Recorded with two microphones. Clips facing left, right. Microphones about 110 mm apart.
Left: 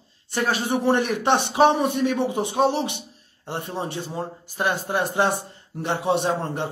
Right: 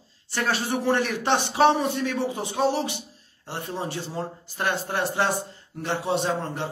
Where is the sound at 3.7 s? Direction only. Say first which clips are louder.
Even; 20° left (ahead or behind).